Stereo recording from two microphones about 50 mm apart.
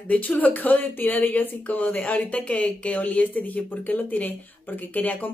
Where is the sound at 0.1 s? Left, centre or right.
Left.